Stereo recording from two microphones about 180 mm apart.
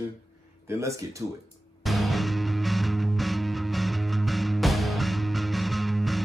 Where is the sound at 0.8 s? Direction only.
15° right (ahead or behind).